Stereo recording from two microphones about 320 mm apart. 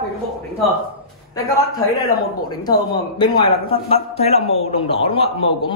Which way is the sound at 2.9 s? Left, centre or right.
Centre.